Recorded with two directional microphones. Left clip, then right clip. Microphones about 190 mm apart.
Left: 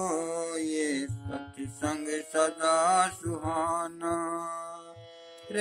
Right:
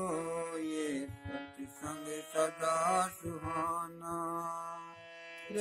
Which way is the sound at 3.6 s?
20° right (ahead or behind).